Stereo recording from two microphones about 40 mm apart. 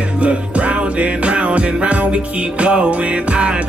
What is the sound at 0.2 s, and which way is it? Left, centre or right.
Music, right.